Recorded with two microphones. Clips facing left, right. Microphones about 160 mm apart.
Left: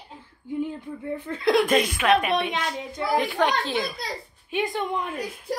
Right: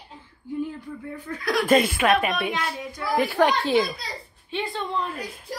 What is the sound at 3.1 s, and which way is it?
Speech, 5° right (ahead or behind).